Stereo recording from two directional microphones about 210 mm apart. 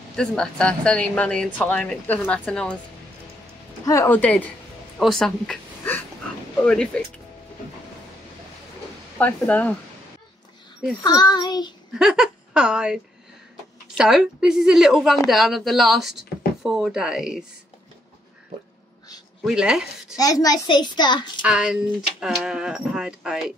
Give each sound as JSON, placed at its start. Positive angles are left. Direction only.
{"t": 0.1, "sound": "speech", "side_deg": 5}
{"t": 3.8, "sound": "a woman's voice", "side_deg": 15}
{"t": 9.2, "sound": "speech", "side_deg": 5}
{"t": 11.0, "sound": "a child's voice", "side_deg": 20}
{"t": 11.9, "sound": "a woman's voice", "side_deg": -5}
{"t": 19.4, "sound": "speech", "side_deg": -5}
{"t": 20.2, "sound": "a child's voice", "side_deg": 15}
{"t": 21.4, "sound": "speech", "side_deg": -5}